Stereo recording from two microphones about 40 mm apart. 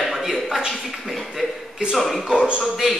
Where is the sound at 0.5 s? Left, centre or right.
Centre.